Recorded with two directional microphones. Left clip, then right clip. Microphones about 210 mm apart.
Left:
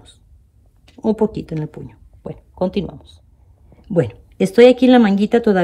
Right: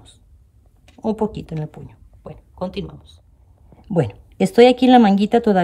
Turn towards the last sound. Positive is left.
turn(degrees=-20)  # may be behind; listen again after turning